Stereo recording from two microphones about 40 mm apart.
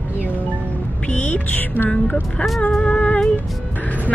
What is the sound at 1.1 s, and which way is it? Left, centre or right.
Speech, left.